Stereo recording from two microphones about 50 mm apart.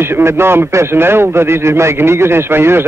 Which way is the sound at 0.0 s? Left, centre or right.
Right.